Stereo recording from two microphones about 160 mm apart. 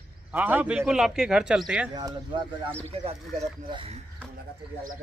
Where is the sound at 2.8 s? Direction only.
40° right (ahead or behind).